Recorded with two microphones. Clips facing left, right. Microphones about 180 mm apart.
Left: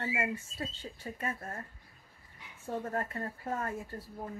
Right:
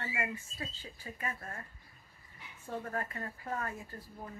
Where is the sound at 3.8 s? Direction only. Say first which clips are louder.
Left 5 dB; 30° left (ahead or behind).